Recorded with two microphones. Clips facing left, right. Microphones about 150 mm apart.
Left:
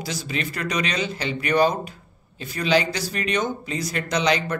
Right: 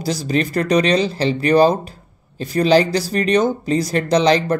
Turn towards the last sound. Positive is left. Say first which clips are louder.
# right 7 dB
turn(degrees=-35)  # may be behind; listen again after turning